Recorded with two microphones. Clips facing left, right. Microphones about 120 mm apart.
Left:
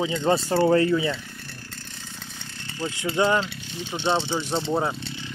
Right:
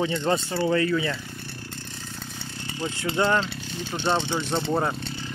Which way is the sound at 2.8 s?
15° right (ahead or behind).